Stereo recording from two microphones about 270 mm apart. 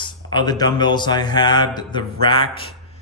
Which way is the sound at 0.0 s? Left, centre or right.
Centre.